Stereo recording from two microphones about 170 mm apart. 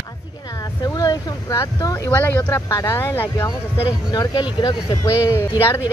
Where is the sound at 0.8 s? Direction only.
20° left (ahead or behind).